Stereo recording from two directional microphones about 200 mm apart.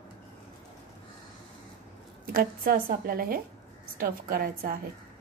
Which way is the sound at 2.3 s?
45° right (ahead or behind).